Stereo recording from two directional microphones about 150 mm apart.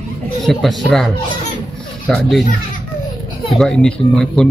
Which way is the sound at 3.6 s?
5° left (ahead or behind).